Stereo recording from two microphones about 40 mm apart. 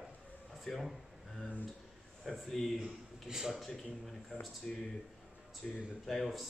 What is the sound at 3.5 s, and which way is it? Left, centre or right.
Speech, centre.